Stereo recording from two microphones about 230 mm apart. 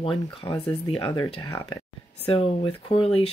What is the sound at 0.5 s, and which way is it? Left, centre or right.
Speech, centre.